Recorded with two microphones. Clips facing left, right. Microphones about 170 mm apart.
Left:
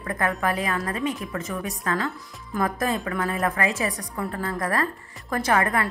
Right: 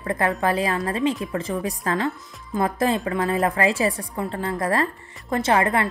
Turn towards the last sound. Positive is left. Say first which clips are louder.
# right 2 dB
turn(degrees=-25)  # may be behind; listen again after turning